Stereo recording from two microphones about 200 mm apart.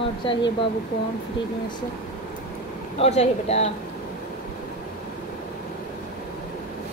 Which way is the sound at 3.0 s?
30° left (ahead or behind).